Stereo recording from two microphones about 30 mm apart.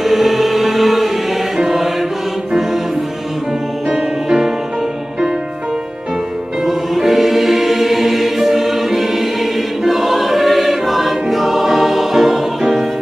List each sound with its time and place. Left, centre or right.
0.0 s music: centre
1.6 s mantra: centre
3.9 s music: right
6.6 s choir: centre